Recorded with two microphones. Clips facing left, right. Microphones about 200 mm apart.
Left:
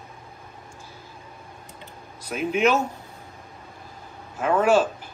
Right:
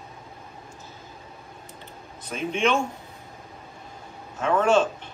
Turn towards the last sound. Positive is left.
turn(degrees=10)  # may be behind; listen again after turning